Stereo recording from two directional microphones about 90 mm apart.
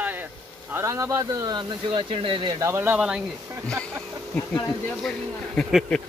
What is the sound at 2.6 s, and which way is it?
Speech, 25° right (ahead or behind).